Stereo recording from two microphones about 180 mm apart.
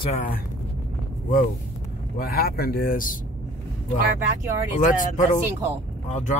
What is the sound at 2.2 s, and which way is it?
Speech, 55° left (ahead or behind).